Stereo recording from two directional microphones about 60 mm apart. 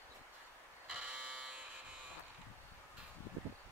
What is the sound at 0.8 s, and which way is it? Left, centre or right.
Buzzer, centre.